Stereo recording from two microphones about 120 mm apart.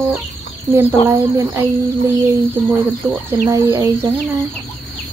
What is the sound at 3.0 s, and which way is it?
Speech, 10° right (ahead or behind).